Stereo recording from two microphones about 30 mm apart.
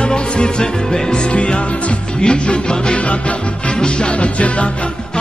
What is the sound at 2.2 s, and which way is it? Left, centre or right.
Music, left.